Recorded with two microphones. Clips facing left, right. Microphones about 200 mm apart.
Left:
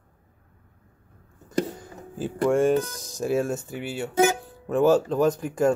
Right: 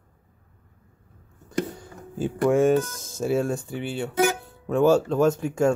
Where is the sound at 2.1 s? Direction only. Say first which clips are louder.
Right 1 dB; centre (ahead or behind).